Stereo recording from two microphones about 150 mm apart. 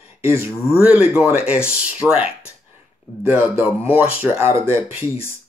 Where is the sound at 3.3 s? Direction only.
10° right (ahead or behind).